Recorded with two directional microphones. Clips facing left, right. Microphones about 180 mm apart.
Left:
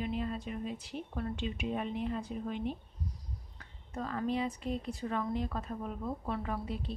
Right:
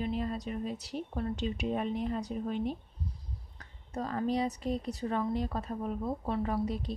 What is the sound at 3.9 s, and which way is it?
Speech, 35° right (ahead or behind).